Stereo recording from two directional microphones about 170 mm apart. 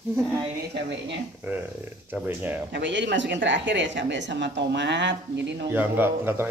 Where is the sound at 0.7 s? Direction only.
90° right.